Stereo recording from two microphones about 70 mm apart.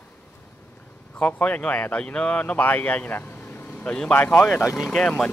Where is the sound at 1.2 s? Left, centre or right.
Centre.